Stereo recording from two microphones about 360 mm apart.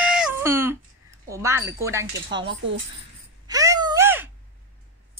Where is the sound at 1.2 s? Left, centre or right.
Centre.